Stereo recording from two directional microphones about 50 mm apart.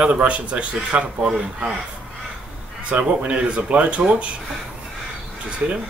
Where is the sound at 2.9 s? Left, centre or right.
Right.